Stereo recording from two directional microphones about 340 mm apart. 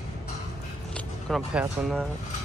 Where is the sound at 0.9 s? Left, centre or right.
Centre.